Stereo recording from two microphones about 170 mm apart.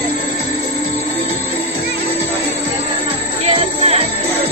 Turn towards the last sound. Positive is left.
turn(degrees=-35)  # may be behind; listen again after turning